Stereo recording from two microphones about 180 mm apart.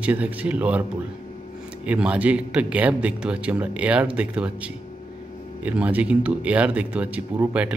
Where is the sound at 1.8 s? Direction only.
5° right (ahead or behind).